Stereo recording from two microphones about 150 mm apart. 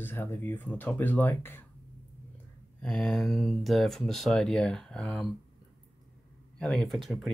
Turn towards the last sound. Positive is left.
turn(degrees=0)  # may be behind; listen again after turning